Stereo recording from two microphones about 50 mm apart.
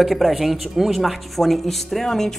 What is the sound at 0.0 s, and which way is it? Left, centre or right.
Speech, centre.